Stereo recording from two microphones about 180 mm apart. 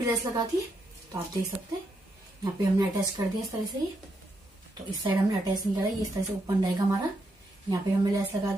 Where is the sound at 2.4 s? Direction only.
20° right (ahead or behind).